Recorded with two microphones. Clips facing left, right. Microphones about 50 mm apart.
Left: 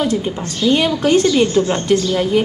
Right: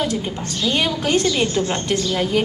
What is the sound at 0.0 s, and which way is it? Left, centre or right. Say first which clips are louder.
A woman's voice: left 4 dB; centre.